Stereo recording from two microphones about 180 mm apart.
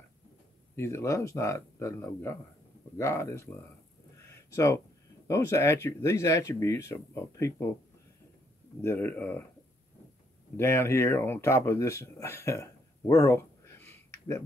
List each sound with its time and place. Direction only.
0.7 s speech: 15° left (ahead or behind)
5.3 s speech: 15° left (ahead or behind)
8.8 s speech: 10° left (ahead or behind)
10.6 s speech: 15° left (ahead or behind)